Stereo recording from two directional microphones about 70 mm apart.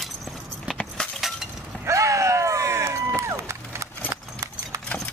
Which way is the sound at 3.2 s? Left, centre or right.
Right.